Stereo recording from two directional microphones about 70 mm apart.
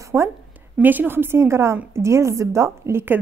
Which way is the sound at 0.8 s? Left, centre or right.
Right.